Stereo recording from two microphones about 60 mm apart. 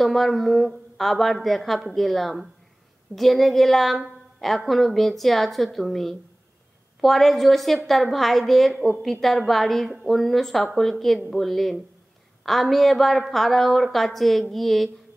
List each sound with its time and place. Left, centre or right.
0.0 s a woman's voice: centre